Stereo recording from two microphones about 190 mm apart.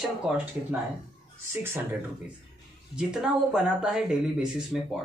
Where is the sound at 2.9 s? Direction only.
5° right (ahead or behind).